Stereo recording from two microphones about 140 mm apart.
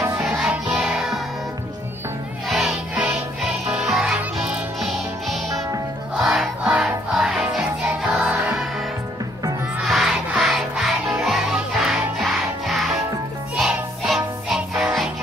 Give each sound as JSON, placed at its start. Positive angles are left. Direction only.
{"t": 0.4, "sound": "music", "side_deg": -5}
{"t": 2.4, "sound": "music", "side_deg": 0}
{"t": 3.6, "sound": "music", "side_deg": -10}
{"t": 9.8, "sound": "music", "side_deg": -5}